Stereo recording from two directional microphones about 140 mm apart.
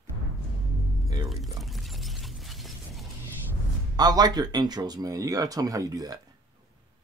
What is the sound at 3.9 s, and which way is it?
Speech, 30° right (ahead or behind).